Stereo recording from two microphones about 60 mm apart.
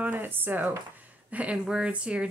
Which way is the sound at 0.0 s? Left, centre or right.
Right.